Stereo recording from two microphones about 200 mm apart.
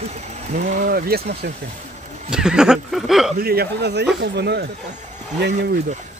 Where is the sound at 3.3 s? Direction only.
50° right (ahead or behind).